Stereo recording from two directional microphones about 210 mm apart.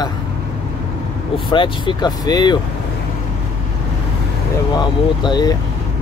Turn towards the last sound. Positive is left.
turn(degrees=20)  # may be behind; listen again after turning